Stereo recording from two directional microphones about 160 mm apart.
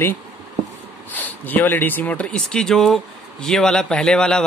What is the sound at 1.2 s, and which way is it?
Speech, 10° left (ahead or behind).